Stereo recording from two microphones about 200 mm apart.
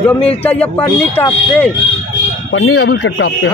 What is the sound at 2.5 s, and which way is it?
Speech, 75° left (ahead or behind).